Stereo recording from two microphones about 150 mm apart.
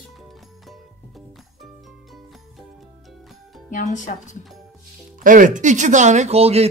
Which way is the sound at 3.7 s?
55° left (ahead or behind).